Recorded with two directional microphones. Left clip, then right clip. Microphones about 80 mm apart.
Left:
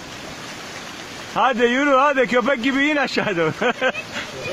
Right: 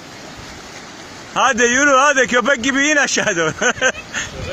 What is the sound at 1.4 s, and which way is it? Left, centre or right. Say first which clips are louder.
Speech: right 4 dB; centre.